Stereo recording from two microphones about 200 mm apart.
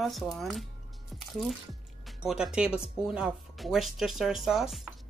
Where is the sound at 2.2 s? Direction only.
5° right (ahead or behind).